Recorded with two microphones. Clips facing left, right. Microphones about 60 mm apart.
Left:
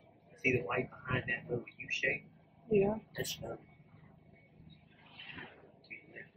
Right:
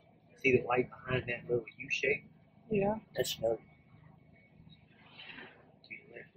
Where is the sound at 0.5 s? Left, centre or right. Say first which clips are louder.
Right 5 dB; centre.